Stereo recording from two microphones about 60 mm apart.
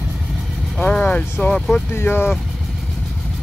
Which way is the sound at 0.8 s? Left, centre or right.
Left.